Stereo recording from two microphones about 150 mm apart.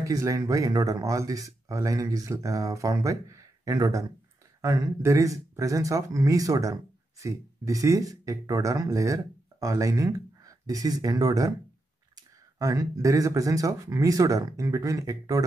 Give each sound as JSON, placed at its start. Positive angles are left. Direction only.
{"t": 0.0, "sound": "speech", "side_deg": -20}